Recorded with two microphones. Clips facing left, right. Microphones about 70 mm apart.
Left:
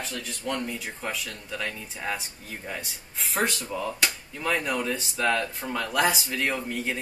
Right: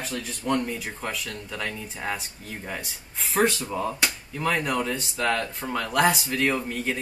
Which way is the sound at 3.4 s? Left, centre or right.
Right.